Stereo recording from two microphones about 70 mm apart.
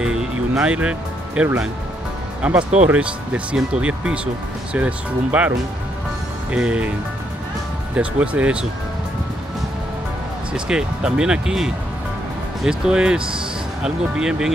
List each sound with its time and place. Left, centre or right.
0.0 s music: centre
0.7 s speech: centre
6.5 s speech: centre
7.9 s speech: centre
10.5 s speech: centre